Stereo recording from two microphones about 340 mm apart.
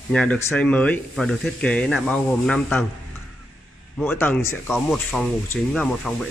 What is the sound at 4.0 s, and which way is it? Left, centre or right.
Speech, centre.